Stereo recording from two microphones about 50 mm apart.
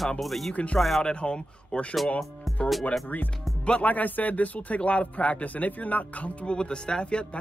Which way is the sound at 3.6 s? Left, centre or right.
Left.